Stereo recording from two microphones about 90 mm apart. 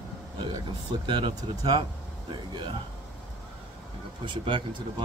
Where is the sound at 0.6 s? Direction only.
60° right (ahead or behind).